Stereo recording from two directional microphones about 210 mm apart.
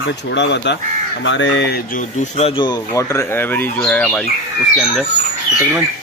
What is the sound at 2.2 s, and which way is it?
Speech, 30° left (ahead or behind).